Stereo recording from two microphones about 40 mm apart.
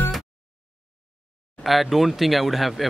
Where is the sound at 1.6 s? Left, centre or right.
Centre.